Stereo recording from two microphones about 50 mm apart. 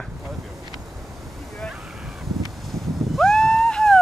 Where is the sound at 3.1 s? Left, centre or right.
Centre.